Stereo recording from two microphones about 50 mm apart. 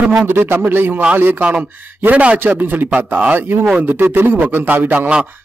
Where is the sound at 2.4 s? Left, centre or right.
Right.